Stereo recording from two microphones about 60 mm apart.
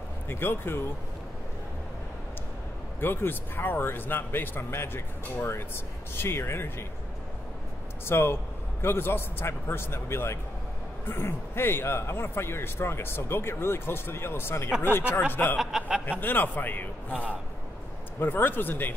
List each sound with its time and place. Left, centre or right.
0.3 s speech: left
3.0 s speech: left
8.0 s speech: left
15.5 s speech: centre
16.1 s speech: left
18.2 s speech: left